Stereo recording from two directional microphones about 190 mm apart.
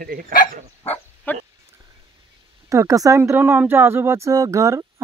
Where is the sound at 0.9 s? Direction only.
10° left (ahead or behind).